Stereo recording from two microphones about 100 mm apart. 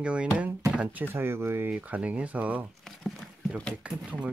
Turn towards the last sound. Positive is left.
turn(degrees=-10)  # may be behind; listen again after turning